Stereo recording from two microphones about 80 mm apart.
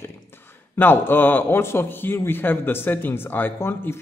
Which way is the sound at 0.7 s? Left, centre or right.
Left.